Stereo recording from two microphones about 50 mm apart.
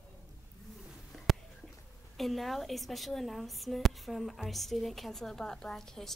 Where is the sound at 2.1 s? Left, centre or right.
Centre.